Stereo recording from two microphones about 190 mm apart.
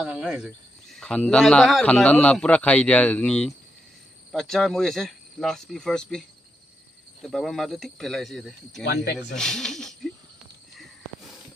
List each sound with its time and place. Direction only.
0.0 s a man's voice: 5° right (ahead or behind)
7.2 s a man's voice: centre (ahead or behind)
8.8 s speech: 60° left (ahead or behind)
9.3 s speech: centre (ahead or behind)